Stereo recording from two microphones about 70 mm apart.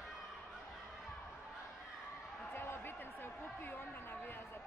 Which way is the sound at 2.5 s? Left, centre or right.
Left.